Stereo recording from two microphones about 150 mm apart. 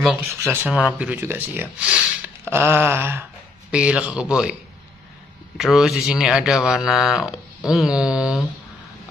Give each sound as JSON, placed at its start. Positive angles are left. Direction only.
{"t": 0.4, "sound": "speech", "side_deg": -15}
{"t": 5.6, "sound": "speech", "side_deg": -5}